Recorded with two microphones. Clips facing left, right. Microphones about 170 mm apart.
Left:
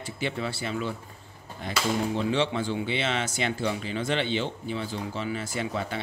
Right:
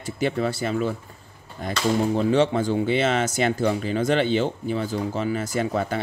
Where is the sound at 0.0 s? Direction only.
45° right (ahead or behind).